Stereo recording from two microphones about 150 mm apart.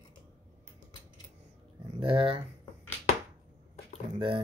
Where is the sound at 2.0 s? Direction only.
35° right (ahead or behind).